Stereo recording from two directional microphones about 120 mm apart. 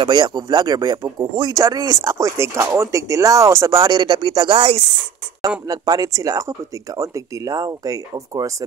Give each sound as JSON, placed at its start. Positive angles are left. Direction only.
{"t": 0.0, "sound": "speech", "side_deg": -40}
{"t": 2.0, "sound": "speech", "side_deg": -25}
{"t": 3.8, "sound": "speech", "side_deg": -40}
{"t": 5.7, "sound": "speech", "side_deg": -30}